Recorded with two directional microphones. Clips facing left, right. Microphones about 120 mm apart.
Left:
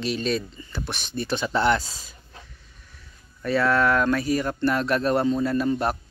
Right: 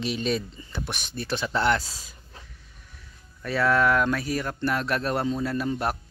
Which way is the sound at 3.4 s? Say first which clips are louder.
Left 1 dB; 5° right (ahead or behind).